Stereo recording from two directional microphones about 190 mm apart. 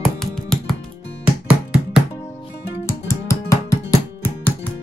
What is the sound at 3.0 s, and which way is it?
Music, 15° left (ahead or behind).